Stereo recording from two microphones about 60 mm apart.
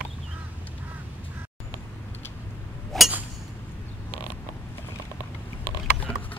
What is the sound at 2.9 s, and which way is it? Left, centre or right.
Chink, centre.